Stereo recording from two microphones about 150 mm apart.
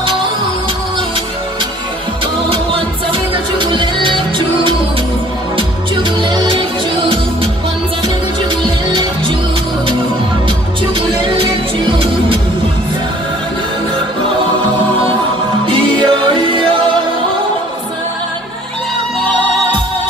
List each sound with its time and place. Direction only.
2.5 s music: 35° right (ahead or behind)
6.2 s music: 35° right (ahead or behind)
11.0 s music: 35° right (ahead or behind)
15.6 s music: 35° right (ahead or behind)